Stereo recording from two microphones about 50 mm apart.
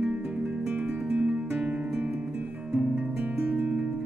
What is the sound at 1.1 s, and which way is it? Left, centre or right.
Music, right.